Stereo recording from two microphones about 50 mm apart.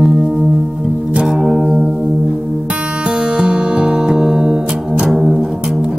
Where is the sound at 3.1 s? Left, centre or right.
Centre.